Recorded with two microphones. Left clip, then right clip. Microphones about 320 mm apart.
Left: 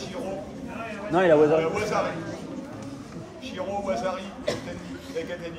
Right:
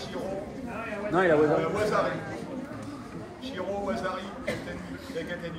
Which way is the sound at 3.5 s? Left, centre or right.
Centre.